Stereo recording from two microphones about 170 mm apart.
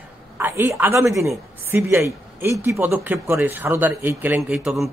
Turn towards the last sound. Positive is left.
turn(degrees=-5)  # may be behind; listen again after turning